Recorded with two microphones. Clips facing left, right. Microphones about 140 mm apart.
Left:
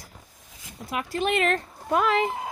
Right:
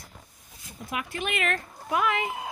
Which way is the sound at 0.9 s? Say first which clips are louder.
Left 6 dB; 35° left (ahead or behind).